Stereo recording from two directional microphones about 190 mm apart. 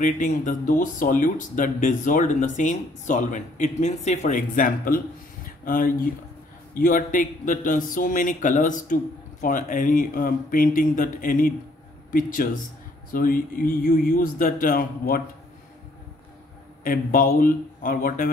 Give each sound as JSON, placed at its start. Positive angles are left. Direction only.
{"t": 0.0, "sound": "a man's voice", "side_deg": 40}
{"t": 16.8, "sound": "a man's voice", "side_deg": 45}